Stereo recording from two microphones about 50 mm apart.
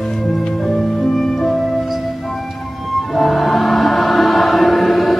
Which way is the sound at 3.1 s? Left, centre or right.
Centre.